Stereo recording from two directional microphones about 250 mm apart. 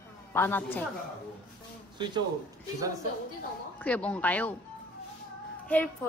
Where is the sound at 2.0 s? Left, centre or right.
Centre.